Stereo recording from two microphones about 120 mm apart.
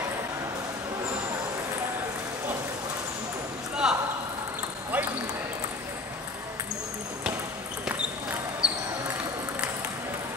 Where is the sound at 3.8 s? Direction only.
5° right (ahead or behind).